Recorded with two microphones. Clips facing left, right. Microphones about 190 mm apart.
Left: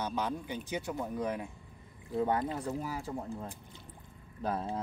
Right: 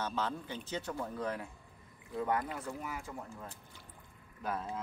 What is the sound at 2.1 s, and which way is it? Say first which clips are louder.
Speech: left 4 dB; 30° left (ahead or behind).